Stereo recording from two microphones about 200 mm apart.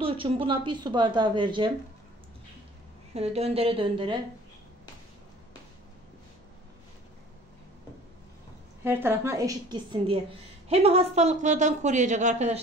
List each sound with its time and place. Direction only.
0.0 s a woman's voice: 25° right (ahead or behind)
3.2 s a woman's voice: 30° right (ahead or behind)
8.8 s a woman's voice: 10° right (ahead or behind); by 12.5 s 35° right (ahead or behind)